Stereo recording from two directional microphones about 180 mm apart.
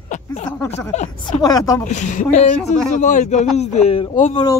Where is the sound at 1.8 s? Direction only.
40° left (ahead or behind).